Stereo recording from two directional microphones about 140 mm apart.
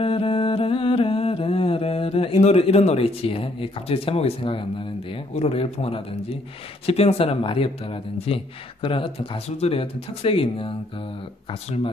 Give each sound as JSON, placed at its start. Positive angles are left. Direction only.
{"t": 0.0, "sound": "mantra", "side_deg": 40}
{"t": 6.9, "sound": "speech", "side_deg": 45}